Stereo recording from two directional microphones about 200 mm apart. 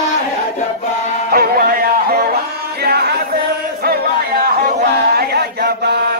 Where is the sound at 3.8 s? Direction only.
50° right (ahead or behind).